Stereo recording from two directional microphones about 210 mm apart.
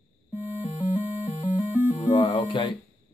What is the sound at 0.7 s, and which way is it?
Music, 30° left (ahead or behind).